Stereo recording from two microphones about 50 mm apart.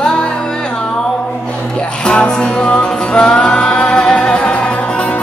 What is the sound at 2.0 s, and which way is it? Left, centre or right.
Music, centre.